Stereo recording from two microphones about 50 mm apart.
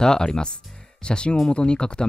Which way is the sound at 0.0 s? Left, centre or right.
Centre.